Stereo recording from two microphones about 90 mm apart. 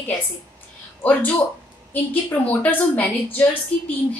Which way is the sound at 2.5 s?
15° left (ahead or behind).